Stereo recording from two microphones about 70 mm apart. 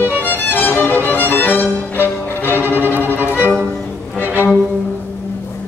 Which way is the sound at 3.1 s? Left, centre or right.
Right.